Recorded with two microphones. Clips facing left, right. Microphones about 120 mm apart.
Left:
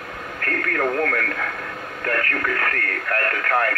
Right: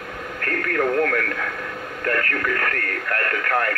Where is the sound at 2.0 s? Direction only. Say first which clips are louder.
Even; 45° left (ahead or behind).